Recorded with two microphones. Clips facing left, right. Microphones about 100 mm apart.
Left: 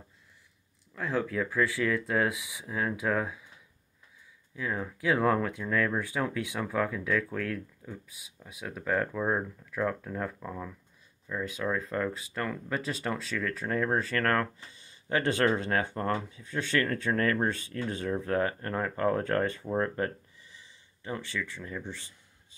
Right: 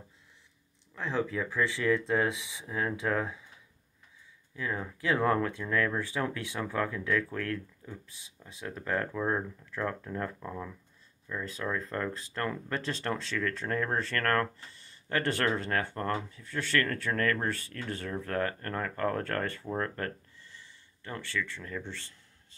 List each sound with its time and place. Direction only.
0.9 s speech: 5° left (ahead or behind)
1.6 s speech: 20° right (ahead or behind)
2.0 s speech: 10° left (ahead or behind)
4.6 s speech: 5° left (ahead or behind)